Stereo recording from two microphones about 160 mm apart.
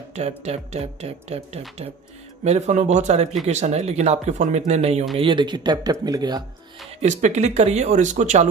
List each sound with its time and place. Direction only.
0.4 s speech: 45° right (ahead or behind)
5.2 s speech: 30° right (ahead or behind)
7.0 s speech: 50° right (ahead or behind)